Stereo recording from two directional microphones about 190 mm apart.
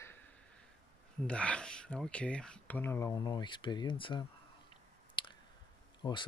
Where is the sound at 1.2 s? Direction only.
5° left (ahead or behind); by 4.2 s 25° left (ahead or behind).